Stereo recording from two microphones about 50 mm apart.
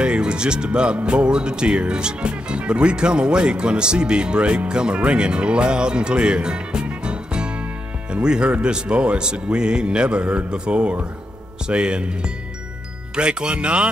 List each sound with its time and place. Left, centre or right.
0.0 s speech: centre